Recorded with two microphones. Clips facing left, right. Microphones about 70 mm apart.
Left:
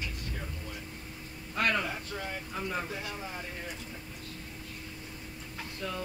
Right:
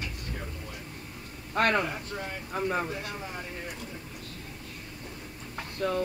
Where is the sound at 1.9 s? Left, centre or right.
Centre.